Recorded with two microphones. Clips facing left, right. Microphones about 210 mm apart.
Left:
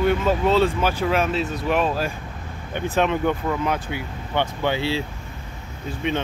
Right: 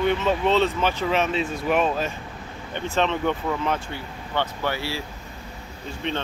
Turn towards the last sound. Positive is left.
turn(degrees=10)  # may be behind; listen again after turning